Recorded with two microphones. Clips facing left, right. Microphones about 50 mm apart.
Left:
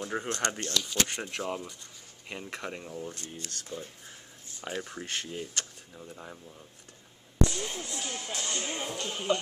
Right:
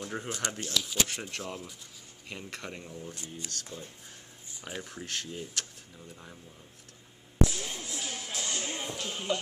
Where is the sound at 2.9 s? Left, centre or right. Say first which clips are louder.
Left 4 dB; left.